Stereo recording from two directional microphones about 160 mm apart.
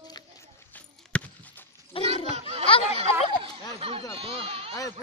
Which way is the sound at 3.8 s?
35° right (ahead or behind).